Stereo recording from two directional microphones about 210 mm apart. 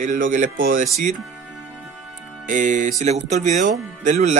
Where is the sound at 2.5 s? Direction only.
40° right (ahead or behind).